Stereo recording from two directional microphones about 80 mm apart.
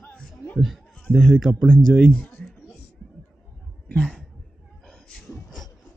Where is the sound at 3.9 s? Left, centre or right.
Centre.